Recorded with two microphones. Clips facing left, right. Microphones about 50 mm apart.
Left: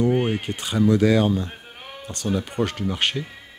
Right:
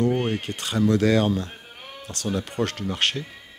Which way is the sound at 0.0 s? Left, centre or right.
Centre.